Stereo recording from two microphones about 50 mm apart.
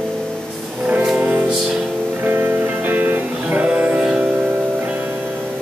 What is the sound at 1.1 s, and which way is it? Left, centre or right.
Music, right.